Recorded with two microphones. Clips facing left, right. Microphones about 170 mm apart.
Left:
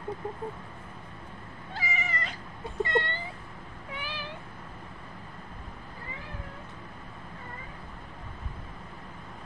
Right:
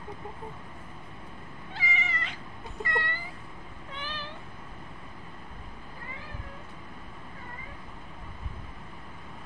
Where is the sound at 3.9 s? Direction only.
10° left (ahead or behind).